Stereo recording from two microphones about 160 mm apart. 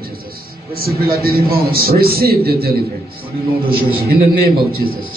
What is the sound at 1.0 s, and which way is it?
A man's voice, 70° right (ahead or behind).